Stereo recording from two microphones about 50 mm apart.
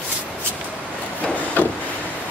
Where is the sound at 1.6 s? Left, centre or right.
Left.